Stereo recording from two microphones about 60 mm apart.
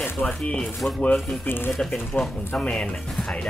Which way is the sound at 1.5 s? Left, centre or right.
Left.